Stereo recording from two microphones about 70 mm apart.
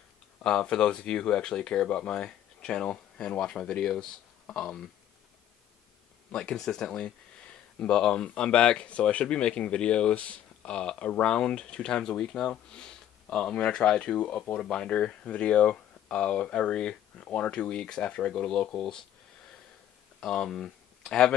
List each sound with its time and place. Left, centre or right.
0.4 s speech: centre
6.3 s speech: centre
20.2 s speech: centre